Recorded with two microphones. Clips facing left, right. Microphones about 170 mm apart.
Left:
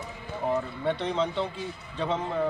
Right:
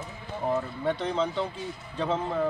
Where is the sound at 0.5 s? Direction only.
Centre (ahead or behind).